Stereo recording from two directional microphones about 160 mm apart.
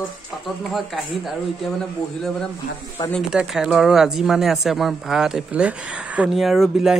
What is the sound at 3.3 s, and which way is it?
Speech, 5° right (ahead or behind).